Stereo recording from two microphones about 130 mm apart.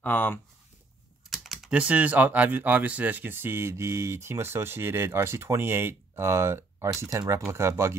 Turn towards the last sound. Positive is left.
turn(degrees=-20)  # may be behind; listen again after turning